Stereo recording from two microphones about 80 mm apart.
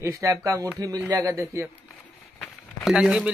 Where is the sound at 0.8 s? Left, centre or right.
Right.